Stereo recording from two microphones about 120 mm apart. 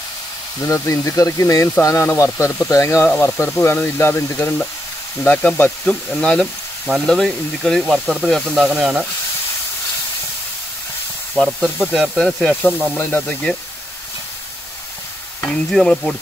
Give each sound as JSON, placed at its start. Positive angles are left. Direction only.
{"t": 0.6, "sound": "speech", "side_deg": 25}
{"t": 11.3, "sound": "speech", "side_deg": 5}
{"t": 12.6, "sound": "speech", "side_deg": 15}
{"t": 15.4, "sound": "speech", "side_deg": 5}